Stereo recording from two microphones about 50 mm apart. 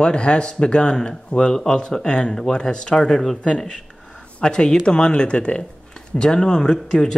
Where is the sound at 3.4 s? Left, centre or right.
Centre.